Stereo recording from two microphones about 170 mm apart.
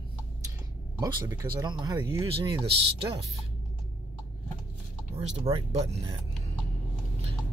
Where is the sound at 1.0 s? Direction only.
20° right (ahead or behind).